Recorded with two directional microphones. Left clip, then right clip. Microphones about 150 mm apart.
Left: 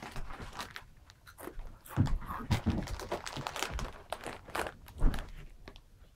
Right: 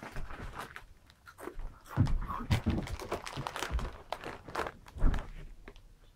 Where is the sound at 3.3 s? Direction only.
Centre (ahead or behind).